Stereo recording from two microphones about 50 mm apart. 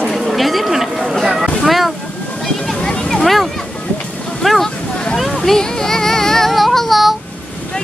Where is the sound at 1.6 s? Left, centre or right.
Centre.